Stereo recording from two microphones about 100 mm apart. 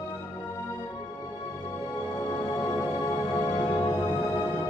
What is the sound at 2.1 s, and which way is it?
Music, 35° left (ahead or behind).